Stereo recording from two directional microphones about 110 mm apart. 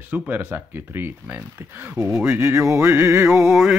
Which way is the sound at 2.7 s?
25° right (ahead or behind).